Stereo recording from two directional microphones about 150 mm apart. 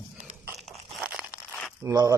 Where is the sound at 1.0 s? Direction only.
10° right (ahead or behind).